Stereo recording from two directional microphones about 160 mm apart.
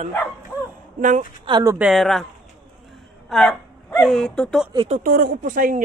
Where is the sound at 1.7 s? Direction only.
5° right (ahead or behind).